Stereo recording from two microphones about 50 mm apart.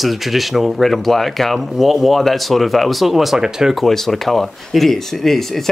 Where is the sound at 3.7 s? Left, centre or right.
Centre.